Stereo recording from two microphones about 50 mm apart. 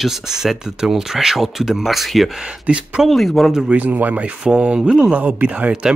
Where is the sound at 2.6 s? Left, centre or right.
Right.